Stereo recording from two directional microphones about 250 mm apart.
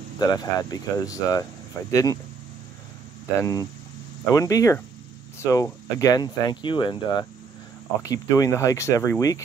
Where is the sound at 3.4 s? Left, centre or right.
Centre.